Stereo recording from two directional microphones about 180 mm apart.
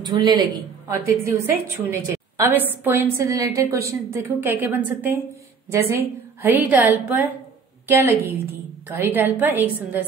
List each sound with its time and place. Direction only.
0.0 s a woman's voice: 25° right (ahead or behind)